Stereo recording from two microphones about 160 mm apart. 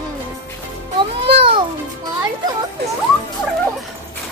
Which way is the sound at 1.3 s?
35° right (ahead or behind).